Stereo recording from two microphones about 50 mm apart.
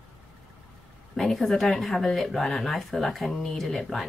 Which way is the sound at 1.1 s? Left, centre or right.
Centre.